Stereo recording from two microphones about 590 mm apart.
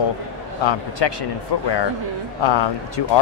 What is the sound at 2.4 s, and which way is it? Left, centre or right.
Speech, left.